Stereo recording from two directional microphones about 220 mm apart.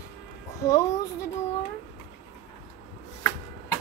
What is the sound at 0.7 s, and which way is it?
Speech, 15° left (ahead or behind).